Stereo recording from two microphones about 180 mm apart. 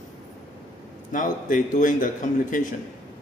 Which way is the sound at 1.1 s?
45° left (ahead or behind).